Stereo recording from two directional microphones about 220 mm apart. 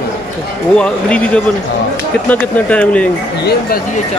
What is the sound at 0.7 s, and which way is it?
Speech, 5° left (ahead or behind).